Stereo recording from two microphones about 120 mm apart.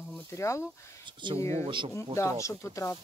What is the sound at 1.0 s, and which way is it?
Speech, 40° right (ahead or behind).